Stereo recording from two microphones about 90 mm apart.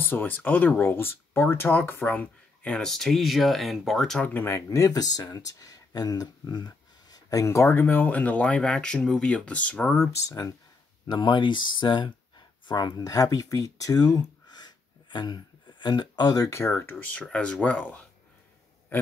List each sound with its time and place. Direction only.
0.0 s speech: 25° left (ahead or behind); by 4.2 s centre (ahead or behind)
4.2 s speech: 20° left (ahead or behind)
4.5 s speech: 35° left (ahead or behind); by 9.8 s 15° left (ahead or behind)
9.9 s speech: 35° left (ahead or behind)
11.1 s speech: 60° left (ahead or behind); by 16.9 s 30° left (ahead or behind)
16.9 s speech: 15° left (ahead or behind)